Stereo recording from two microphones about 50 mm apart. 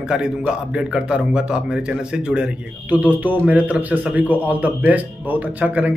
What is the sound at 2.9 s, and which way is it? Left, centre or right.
A man's voice, right.